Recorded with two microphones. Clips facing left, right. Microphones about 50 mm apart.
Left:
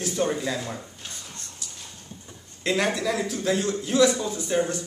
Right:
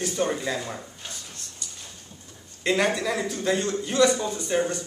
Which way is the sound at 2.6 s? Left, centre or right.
Centre.